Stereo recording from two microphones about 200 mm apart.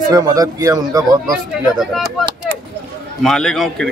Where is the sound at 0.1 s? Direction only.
20° right (ahead or behind).